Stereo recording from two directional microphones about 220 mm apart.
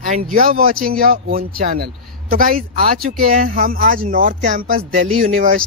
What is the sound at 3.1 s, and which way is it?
Speech, 40° right (ahead or behind).